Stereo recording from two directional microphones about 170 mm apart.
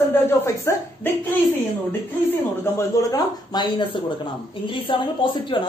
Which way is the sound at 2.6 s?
20° left (ahead or behind).